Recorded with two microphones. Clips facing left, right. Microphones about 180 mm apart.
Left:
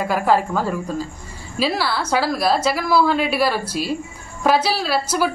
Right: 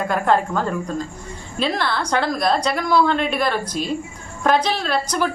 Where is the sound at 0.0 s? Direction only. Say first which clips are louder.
Left 1 dB; 5° left (ahead or behind).